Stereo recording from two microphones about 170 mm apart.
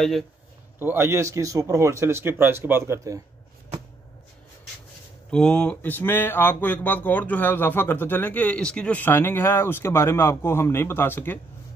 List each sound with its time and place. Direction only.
0.7 s speech: 15° right (ahead or behind)
5.3 s speech: 5° left (ahead or behind)